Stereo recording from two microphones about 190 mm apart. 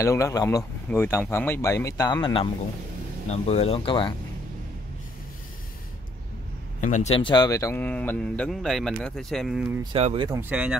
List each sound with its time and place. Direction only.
0.0 s speech: 15° left (ahead or behind)
3.3 s speech: 35° left (ahead or behind)
6.8 s speech: 40° left (ahead or behind); by 9.8 s 5° right (ahead or behind)
9.9 s speech: 30° right (ahead or behind)
10.5 s speech: 5° right (ahead or behind)